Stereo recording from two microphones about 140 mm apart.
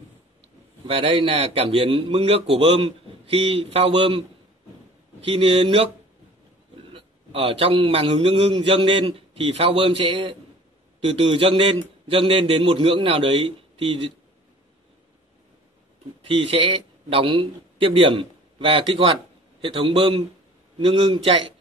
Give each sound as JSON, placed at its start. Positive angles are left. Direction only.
{"t": 0.8, "sound": "speech", "side_deg": -40}
{"t": 5.2, "sound": "speech", "side_deg": -40}
{"t": 6.9, "sound": "a man's voice", "side_deg": -40}
{"t": 16.3, "sound": "a man's voice", "side_deg": -40}